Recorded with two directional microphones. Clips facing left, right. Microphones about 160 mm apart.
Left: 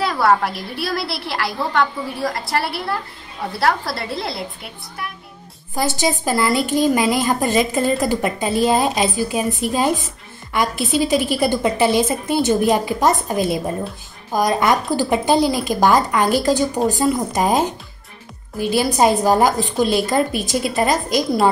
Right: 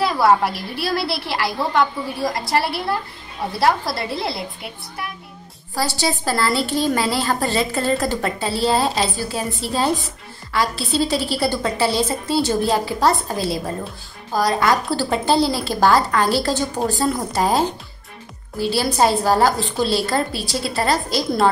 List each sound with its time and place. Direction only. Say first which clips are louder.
0.0 s a woman's voice: right 1 dB; 5° right (ahead or behind)
5.8 s a woman's voice: left 2 dB; 20° left (ahead or behind)